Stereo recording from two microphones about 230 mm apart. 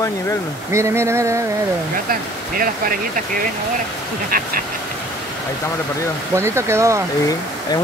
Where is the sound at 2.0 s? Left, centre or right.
Right.